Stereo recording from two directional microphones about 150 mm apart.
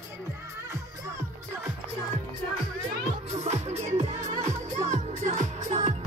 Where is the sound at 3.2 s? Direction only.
45° right (ahead or behind).